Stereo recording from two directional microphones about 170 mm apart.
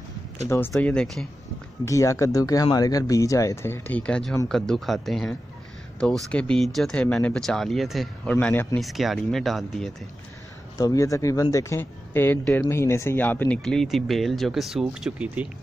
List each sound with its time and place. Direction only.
0.5 s speech: 10° left (ahead or behind)
1.9 s speech: 20° left (ahead or behind); by 9.9 s centre (ahead or behind)
10.8 s speech: 20° left (ahead or behind); by 15.4 s 5° right (ahead or behind)